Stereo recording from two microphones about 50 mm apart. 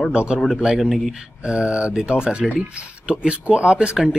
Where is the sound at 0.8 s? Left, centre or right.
Centre.